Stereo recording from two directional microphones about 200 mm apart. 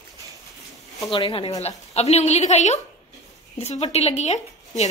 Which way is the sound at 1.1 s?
25° left (ahead or behind).